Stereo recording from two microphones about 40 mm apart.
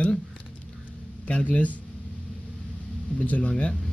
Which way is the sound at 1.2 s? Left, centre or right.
Left.